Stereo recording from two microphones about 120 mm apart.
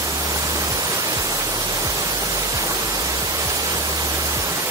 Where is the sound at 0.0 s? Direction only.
30° right (ahead or behind).